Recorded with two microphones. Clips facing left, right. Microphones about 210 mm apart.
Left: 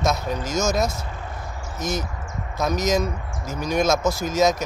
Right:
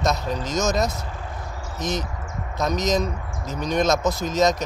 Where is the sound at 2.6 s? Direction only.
5° left (ahead or behind).